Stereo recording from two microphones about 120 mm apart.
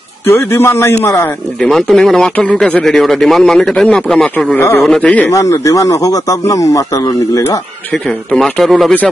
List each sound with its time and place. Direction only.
0.3 s speech: 20° left (ahead or behind)
1.6 s speech: 5° left (ahead or behind)
4.6 s speech: 20° left (ahead or behind)
4.8 s a man's voice: 10° left (ahead or behind)
5.3 s speech: 30° left (ahead or behind)
8.3 s speech: 5° left (ahead or behind)